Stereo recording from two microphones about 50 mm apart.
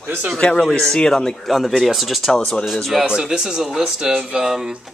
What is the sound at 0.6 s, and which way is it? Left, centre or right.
Speech, centre.